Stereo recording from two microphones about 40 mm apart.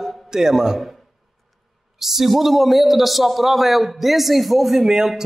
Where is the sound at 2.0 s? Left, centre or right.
Centre.